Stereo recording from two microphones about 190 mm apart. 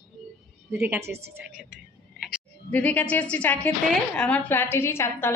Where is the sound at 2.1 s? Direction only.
Centre (ahead or behind).